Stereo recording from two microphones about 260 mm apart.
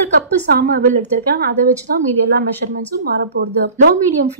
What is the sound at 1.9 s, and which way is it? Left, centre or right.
Speech, right.